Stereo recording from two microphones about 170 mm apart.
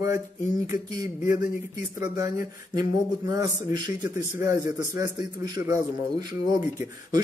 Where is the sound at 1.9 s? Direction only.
20° right (ahead or behind).